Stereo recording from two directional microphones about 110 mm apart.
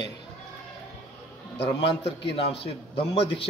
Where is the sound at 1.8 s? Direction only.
50° left (ahead or behind).